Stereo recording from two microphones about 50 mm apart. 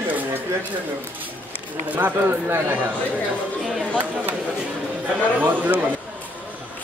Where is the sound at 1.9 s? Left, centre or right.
Right.